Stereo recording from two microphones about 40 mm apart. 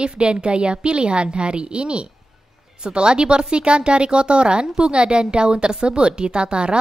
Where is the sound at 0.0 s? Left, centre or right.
Right.